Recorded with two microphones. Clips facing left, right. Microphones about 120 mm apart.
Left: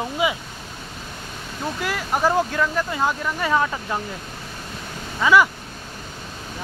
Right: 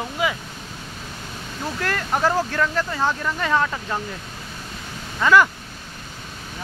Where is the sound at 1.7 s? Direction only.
5° left (ahead or behind).